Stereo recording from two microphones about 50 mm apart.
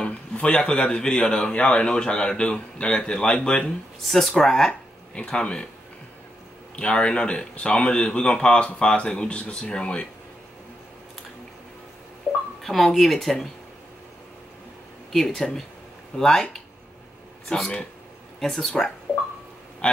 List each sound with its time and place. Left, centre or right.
0.0 s a man's voice: left
4.0 s speech: centre
4.3 s speech: centre
6.8 s a man's voice: centre
12.6 s speech: centre
15.1 s speech: centre
17.5 s a man's voice: left
18.4 s speech: centre
19.1 s a sound: centre
19.8 s quack: left